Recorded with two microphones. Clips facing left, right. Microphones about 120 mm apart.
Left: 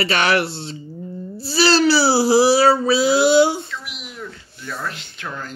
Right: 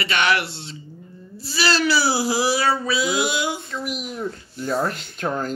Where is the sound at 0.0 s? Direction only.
35° left (ahead or behind).